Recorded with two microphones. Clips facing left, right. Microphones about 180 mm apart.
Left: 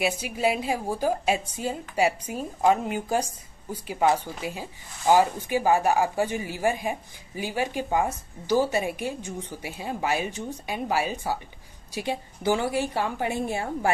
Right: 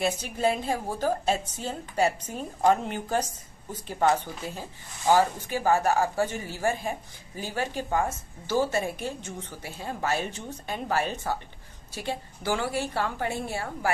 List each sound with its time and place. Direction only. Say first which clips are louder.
0.0 s speech: left 1 dB; 10° left (ahead or behind)